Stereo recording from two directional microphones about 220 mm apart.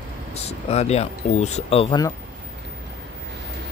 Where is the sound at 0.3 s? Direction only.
30° left (ahead or behind).